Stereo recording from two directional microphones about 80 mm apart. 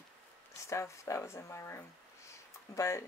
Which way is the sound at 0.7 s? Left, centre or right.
Left.